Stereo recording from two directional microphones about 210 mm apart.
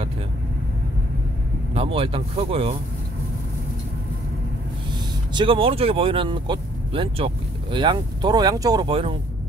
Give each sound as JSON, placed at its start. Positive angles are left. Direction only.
{"t": 1.7, "sound": "speech", "side_deg": -25}
{"t": 5.3, "sound": "speech", "side_deg": -25}